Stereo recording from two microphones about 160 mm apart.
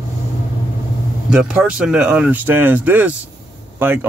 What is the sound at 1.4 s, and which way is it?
Speech, 5° right (ahead or behind).